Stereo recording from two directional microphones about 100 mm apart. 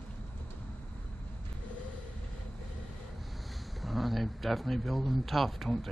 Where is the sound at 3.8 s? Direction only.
Centre (ahead or behind).